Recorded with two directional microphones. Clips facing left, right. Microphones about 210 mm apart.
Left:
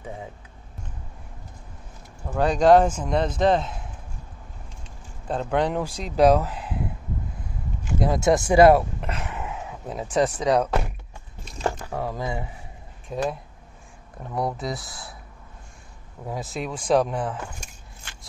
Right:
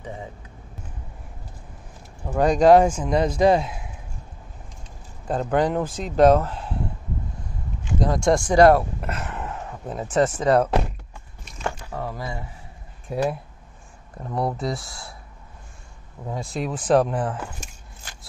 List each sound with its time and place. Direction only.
2.2 s speech: 10° right (ahead or behind)
5.3 s speech: 5° right (ahead or behind)
8.0 s speech: 5° left (ahead or behind)
11.9 s speech: 10° left (ahead or behind)
13.1 s speech: 10° right (ahead or behind)
14.4 s speech: centre (ahead or behind)
16.3 s speech: centre (ahead or behind)